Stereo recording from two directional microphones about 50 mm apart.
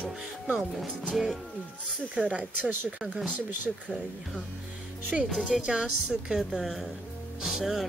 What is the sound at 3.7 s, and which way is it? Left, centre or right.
Speech, centre.